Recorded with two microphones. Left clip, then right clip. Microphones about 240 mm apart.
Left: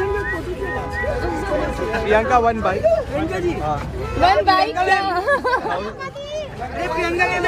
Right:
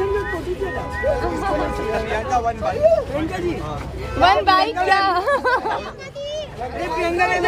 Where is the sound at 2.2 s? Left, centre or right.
Left.